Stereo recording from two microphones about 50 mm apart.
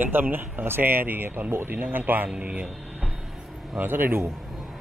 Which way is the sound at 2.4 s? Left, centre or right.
Right.